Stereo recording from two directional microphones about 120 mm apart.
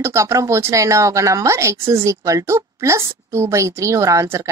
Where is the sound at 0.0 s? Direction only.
25° right (ahead or behind).